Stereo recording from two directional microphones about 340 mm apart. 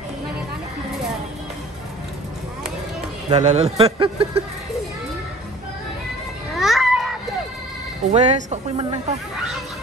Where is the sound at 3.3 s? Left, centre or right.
Centre.